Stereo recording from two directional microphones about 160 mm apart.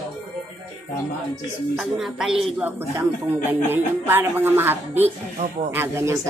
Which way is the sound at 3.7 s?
15° right (ahead or behind).